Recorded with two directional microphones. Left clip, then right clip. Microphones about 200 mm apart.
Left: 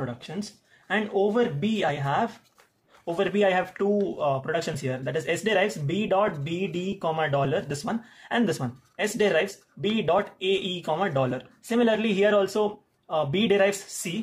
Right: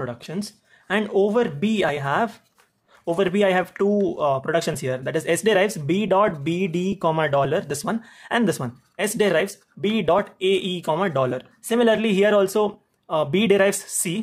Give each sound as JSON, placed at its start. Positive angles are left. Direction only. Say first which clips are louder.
{"t": 0.0, "sound": "speech", "louder": "right 4 dB", "side_deg": -40}